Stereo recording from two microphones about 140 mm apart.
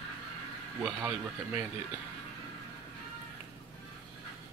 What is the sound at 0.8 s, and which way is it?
Speech, 15° right (ahead or behind).